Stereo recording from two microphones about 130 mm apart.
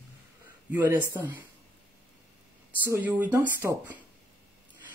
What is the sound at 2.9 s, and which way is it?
Speech, 15° right (ahead or behind).